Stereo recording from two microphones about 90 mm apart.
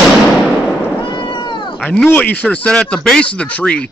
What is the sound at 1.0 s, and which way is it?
Cat, 60° left (ahead or behind).